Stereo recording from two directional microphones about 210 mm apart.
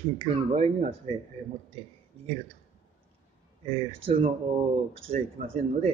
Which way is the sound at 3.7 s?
25° right (ahead or behind).